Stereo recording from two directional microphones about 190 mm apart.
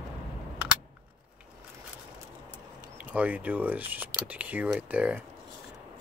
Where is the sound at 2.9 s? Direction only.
10° right (ahead or behind).